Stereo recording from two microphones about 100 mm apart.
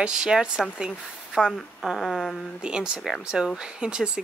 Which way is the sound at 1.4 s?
5° left (ahead or behind).